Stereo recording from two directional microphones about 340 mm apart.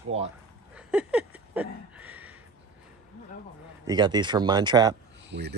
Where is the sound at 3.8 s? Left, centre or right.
Centre.